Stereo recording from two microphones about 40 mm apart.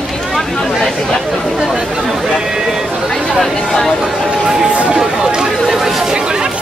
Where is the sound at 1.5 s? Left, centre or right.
Centre.